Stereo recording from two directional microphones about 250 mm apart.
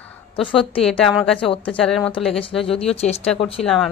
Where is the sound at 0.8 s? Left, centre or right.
Centre.